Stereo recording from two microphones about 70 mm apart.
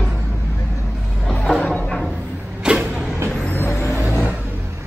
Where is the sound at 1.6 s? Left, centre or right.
Centre.